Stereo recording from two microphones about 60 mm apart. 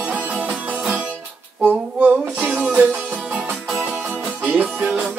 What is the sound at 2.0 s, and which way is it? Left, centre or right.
Music, right.